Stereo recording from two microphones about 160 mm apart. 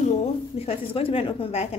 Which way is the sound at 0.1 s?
40° left (ahead or behind).